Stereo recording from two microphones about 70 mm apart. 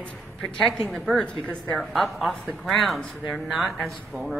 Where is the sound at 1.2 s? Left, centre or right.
Centre.